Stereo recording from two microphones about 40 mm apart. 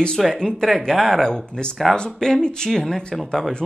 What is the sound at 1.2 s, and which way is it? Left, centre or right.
Speech, centre.